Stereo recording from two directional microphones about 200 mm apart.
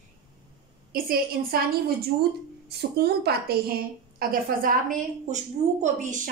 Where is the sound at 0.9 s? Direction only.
45° right (ahead or behind).